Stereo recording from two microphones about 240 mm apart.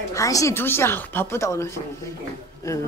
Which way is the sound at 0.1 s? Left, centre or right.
Centre.